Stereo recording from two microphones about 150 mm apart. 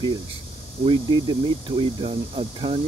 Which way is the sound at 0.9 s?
30° right (ahead or behind).